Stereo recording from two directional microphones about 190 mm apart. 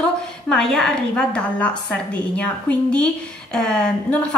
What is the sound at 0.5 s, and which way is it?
A woman's voice, 5° left (ahead or behind).